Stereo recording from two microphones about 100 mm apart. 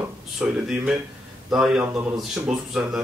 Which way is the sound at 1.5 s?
5° right (ahead or behind).